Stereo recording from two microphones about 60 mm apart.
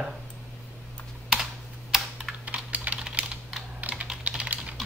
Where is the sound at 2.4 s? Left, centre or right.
Right.